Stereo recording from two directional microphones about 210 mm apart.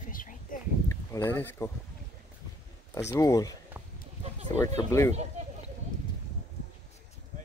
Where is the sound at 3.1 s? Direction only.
15° left (ahead or behind).